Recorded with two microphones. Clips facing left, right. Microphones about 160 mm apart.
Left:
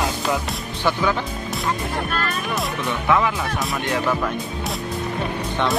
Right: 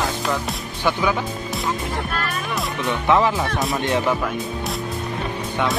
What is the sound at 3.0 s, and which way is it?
Speech, 25° right (ahead or behind).